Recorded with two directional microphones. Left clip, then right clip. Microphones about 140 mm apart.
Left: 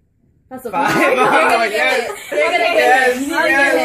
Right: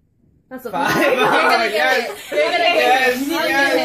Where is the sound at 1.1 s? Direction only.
10° left (ahead or behind).